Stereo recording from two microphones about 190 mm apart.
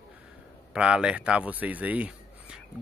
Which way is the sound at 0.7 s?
5° right (ahead or behind).